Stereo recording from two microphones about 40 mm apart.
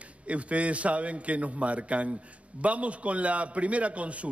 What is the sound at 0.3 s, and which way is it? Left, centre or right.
A man's voice, right.